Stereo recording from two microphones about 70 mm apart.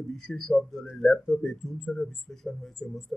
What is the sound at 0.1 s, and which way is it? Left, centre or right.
Speech, centre.